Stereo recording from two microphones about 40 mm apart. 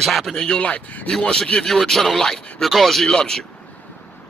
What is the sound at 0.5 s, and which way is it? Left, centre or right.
Speech, left.